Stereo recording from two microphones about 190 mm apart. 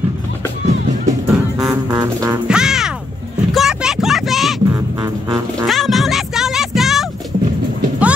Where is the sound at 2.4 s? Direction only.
5° right (ahead or behind).